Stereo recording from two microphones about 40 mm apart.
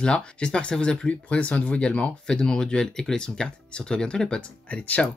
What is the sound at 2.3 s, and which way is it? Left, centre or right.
Speech, centre.